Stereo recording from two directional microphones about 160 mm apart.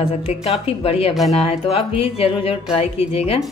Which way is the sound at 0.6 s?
35° left (ahead or behind).